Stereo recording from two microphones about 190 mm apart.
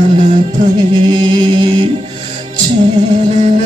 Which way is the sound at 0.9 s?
25° right (ahead or behind).